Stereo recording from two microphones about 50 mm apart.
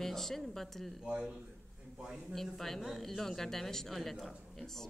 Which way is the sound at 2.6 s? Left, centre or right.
Centre.